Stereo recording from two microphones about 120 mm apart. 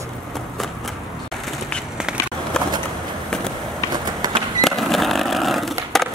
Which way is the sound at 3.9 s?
35° right (ahead or behind).